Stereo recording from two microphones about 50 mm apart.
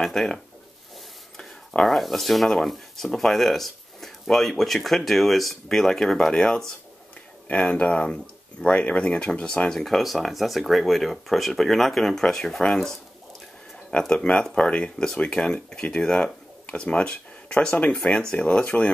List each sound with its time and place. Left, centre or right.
0.0 s speech: centre
1.9 s speech: centre
7.4 s speech: left